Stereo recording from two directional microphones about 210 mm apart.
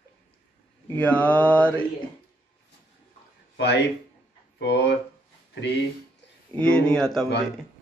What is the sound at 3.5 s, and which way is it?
Speech, 55° left (ahead or behind).